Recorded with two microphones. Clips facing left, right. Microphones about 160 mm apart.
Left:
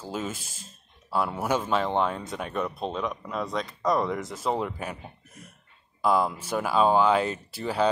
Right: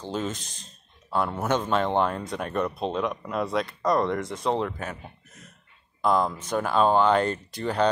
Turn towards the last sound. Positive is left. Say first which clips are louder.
# right 1 dB
turn(degrees=5)  # may be behind; listen again after turning